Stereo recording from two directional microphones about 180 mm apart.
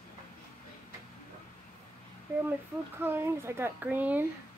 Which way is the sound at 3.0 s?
15° right (ahead or behind).